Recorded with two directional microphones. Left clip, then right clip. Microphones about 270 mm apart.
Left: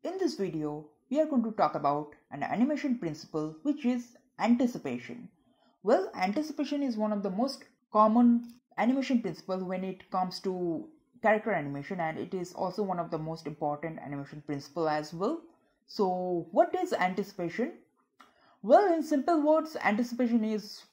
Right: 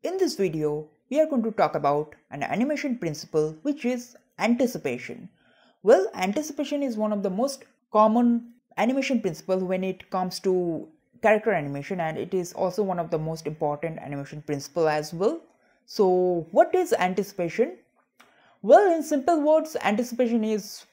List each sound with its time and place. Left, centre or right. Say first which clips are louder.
0.0 s speech: right 7 dB; right